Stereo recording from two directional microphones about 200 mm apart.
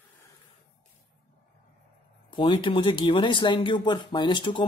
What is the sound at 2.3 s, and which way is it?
A man's voice, 25° left (ahead or behind).